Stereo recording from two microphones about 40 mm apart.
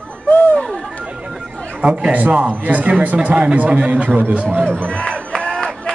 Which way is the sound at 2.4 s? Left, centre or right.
Right.